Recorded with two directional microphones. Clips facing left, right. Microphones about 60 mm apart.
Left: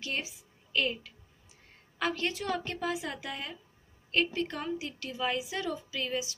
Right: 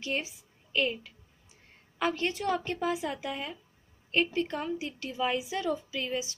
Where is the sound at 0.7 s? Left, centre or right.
Centre.